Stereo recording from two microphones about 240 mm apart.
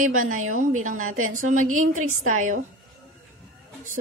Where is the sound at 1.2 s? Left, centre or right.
Right.